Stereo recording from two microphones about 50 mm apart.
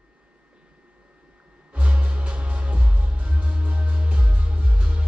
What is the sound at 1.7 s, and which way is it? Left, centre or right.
Music, right.